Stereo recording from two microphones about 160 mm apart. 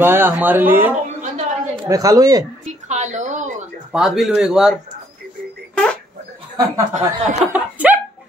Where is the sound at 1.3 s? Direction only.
50° right (ahead or behind).